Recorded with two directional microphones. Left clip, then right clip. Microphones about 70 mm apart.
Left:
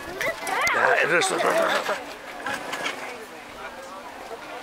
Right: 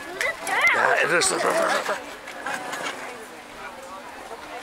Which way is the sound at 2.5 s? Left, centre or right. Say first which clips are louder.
Even; centre.